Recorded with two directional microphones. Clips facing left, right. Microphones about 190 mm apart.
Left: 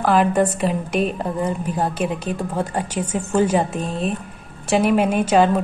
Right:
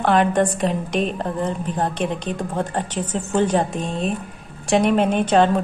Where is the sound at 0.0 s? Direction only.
5° left (ahead or behind).